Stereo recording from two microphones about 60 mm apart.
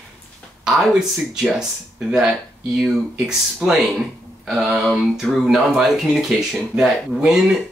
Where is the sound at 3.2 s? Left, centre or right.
Centre.